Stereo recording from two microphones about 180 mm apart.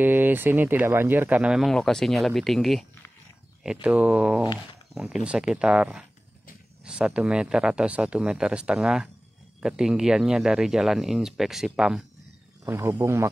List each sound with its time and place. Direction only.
0.0 s speech: 10° right (ahead or behind)
12.6 s speech: 15° right (ahead or behind)